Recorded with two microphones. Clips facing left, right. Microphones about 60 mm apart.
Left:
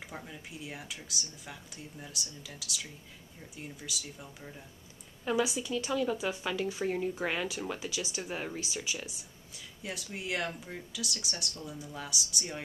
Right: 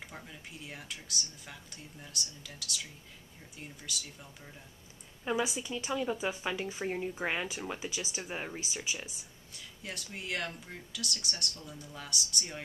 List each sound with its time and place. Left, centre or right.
0.0 s speech: centre
5.3 s a woman's voice: centre
9.0 s speech: centre